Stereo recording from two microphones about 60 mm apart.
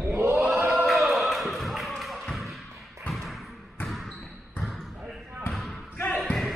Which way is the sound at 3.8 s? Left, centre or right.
Centre.